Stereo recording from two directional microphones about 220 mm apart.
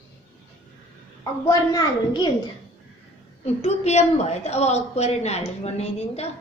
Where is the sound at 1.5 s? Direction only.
15° left (ahead or behind).